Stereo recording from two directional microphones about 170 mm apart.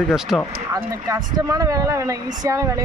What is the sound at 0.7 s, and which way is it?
Speech, 20° right (ahead or behind).